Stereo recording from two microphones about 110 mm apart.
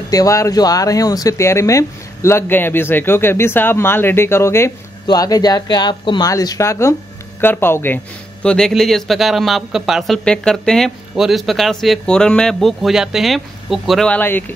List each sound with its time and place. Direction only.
0.1 s speech: 30° left (ahead or behind)
5.0 s speech: 35° left (ahead or behind); by 14.0 s centre (ahead or behind)
14.0 s speech: 15° left (ahead or behind)